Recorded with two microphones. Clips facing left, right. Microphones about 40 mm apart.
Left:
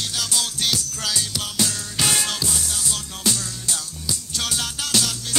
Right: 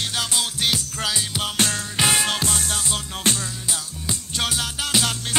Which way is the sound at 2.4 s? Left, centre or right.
Right.